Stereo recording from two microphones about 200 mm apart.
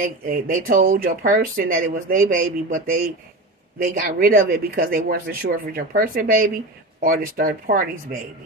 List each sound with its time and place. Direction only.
0.0 s speech: 45° right (ahead or behind)
4.2 s speech: 45° right (ahead or behind)